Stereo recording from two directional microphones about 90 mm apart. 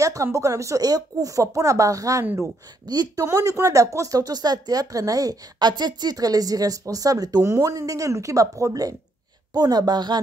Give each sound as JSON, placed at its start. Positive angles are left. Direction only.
{"t": 0.0, "sound": "speech", "side_deg": -35}
{"t": 2.2, "sound": "speech", "side_deg": -25}
{"t": 2.9, "sound": "speech", "side_deg": -50}
{"t": 3.3, "sound": "speech", "side_deg": -35}
{"t": 9.5, "sound": "speech", "side_deg": -50}